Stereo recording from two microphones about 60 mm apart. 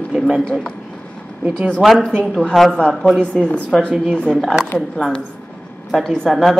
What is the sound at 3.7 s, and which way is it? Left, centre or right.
Speech, centre.